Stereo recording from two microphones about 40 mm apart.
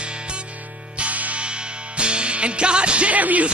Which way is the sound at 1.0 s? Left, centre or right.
Right.